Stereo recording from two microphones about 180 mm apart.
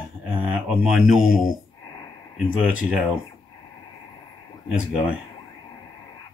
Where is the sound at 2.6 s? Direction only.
5° right (ahead or behind).